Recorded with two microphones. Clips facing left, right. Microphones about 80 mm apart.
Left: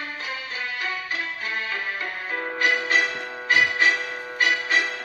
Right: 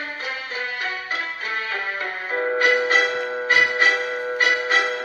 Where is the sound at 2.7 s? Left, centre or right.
Right.